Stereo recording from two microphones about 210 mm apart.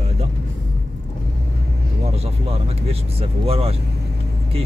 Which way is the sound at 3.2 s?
30° right (ahead or behind).